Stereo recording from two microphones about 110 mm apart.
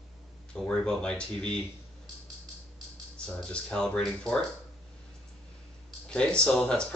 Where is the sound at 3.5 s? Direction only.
5° left (ahead or behind).